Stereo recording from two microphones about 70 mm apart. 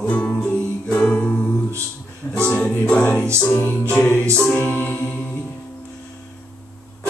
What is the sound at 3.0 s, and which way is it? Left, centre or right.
Speech, centre.